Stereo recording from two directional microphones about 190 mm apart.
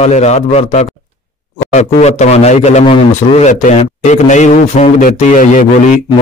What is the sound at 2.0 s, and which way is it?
A man's voice, 35° left (ahead or behind).